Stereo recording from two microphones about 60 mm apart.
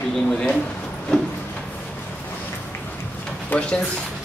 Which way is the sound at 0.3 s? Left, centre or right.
Centre.